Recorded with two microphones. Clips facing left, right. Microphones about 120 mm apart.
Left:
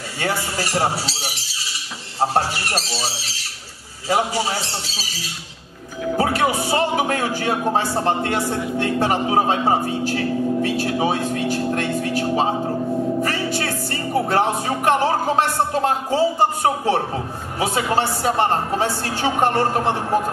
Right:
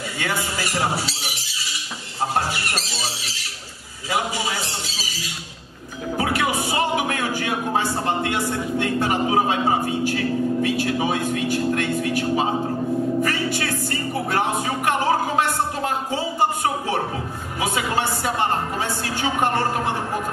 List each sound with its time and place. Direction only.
0.2 s speech: 35° left (ahead or behind)
2.1 s speech: 35° left (ahead or behind)
4.1 s speech: 35° left (ahead or behind)
6.1 s speech: 40° left (ahead or behind)
13.6 s speech: 35° left (ahead or behind)